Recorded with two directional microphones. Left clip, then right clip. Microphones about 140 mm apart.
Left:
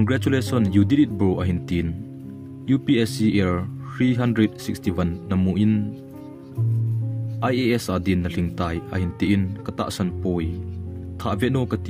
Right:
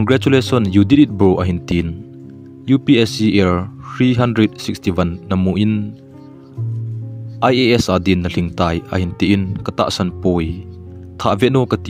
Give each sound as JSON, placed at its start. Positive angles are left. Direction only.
{"t": 0.0, "sound": "speech", "side_deg": -40}
{"t": 7.3, "sound": "speech", "side_deg": -45}